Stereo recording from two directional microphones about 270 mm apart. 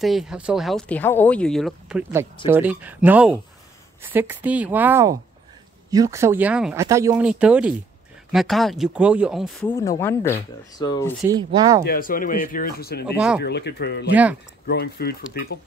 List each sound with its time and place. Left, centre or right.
0.0 s speech: centre
11.2 s speech: centre
11.8 s speech: left
13.0 s speech: centre
13.4 s speech: left